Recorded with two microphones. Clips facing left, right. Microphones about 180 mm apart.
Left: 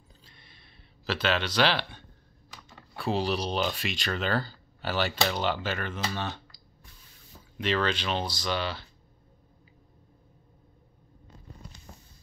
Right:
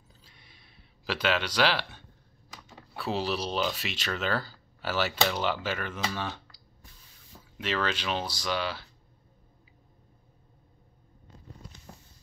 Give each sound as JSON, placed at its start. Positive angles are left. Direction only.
{"t": 0.2, "sound": "a sound", "side_deg": -10}
{"t": 2.7, "sound": "speech", "side_deg": -5}
{"t": 7.5, "sound": "speech", "side_deg": -5}